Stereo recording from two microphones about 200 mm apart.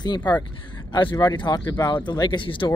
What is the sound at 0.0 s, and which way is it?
A man's voice, 20° left (ahead or behind).